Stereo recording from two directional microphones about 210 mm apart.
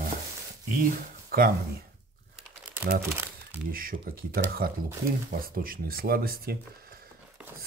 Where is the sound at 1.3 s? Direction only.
45° right (ahead or behind).